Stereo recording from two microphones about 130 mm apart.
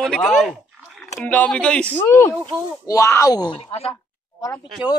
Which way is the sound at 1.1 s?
10° left (ahead or behind).